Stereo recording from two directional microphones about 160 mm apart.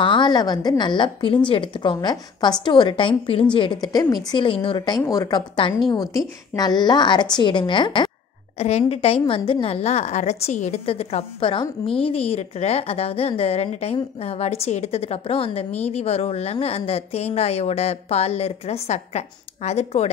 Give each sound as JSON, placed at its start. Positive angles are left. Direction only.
{"t": 0.0, "sound": "a woman's voice", "side_deg": 30}
{"t": 8.5, "sound": "a woman's voice", "side_deg": 40}